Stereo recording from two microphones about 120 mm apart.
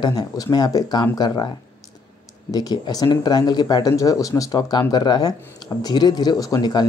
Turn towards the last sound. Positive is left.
turn(degrees=35)  # may be behind; listen again after turning